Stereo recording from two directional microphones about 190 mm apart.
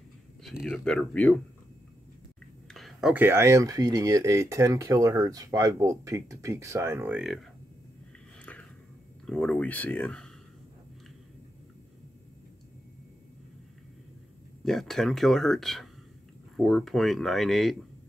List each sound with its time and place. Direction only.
0.4 s speech: centre (ahead or behind)
2.7 s speech: centre (ahead or behind)
9.2 s speech: 5° left (ahead or behind)
14.6 s speech: centre (ahead or behind)